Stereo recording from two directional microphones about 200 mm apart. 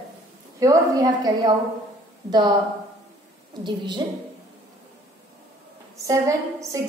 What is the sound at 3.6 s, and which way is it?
Speech, 25° right (ahead or behind).